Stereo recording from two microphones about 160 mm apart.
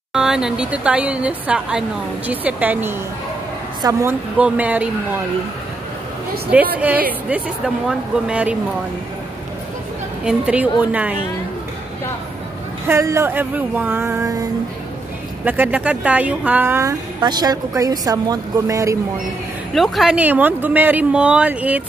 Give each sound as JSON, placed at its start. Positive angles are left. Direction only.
{"t": 0.1, "sound": "a woman's voice", "side_deg": -5}
{"t": 7.2, "sound": "a woman's voice", "side_deg": -10}
{"t": 10.2, "sound": "a woman's voice", "side_deg": -5}
{"t": 12.8, "sound": "a woman's voice", "side_deg": -15}
{"t": 15.4, "sound": "a woman's voice", "side_deg": -10}
{"t": 17.2, "sound": "a woman's voice", "side_deg": -25}
{"t": 19.7, "sound": "a woman's voice", "side_deg": 0}